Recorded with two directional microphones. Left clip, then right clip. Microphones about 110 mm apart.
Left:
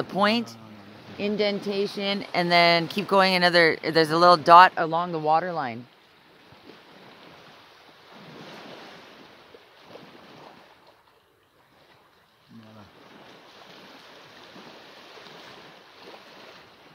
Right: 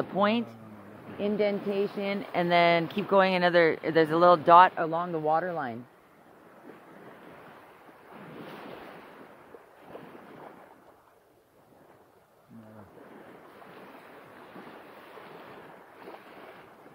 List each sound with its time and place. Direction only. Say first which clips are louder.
0.1 s speech: left 4 dB; 35° left (ahead or behind)
1.2 s speech: left 2 dB; 45° left (ahead or behind)
2.3 s speech: left 3 dB; 30° left (ahead or behind)
4.7 s speech: left 4 dB; 60° left (ahead or behind)